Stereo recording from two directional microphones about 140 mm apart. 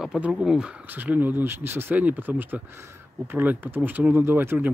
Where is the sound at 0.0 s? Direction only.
5° right (ahead or behind).